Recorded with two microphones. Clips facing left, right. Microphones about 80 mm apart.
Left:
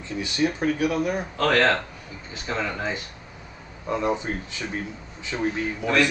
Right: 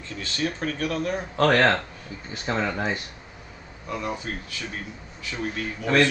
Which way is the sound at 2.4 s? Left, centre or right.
Right.